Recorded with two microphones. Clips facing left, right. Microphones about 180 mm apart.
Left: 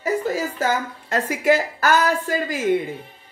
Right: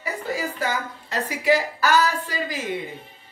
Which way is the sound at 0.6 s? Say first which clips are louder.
Left 4 dB; 45° left (ahead or behind).